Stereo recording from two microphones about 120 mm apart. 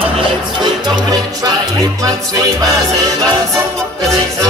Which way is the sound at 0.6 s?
35° right (ahead or behind).